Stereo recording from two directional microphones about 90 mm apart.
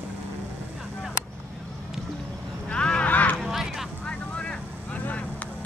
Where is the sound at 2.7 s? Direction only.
10° left (ahead or behind).